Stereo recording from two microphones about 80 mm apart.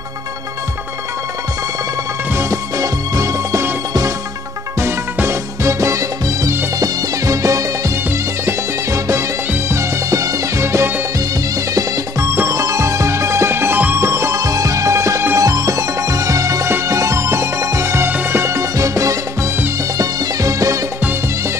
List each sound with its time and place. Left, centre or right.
2.3 s music: right
4.7 s music: right
12.4 s music: right
13.9 s music: right